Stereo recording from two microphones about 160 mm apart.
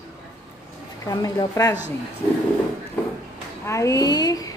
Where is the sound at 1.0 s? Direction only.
25° left (ahead or behind).